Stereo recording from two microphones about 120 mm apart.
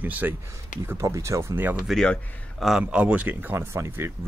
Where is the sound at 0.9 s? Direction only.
25° right (ahead or behind).